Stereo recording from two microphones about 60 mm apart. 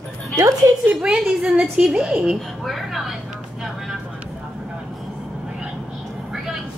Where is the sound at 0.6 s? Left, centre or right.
Right.